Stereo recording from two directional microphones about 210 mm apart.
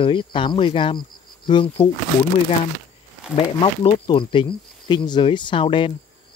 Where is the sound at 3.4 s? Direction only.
25° left (ahead or behind).